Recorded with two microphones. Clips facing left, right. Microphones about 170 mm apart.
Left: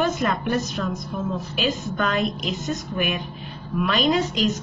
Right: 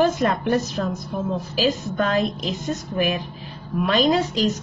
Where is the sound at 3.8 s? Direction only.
35° right (ahead or behind).